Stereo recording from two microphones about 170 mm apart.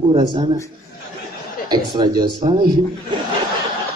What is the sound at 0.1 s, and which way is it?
Speech, 25° right (ahead or behind).